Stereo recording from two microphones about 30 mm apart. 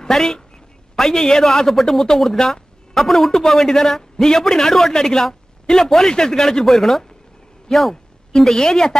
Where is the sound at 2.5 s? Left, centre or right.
Centre.